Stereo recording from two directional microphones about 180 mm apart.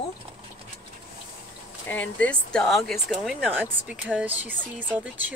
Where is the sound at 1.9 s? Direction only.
10° left (ahead or behind); by 4.6 s 10° right (ahead or behind).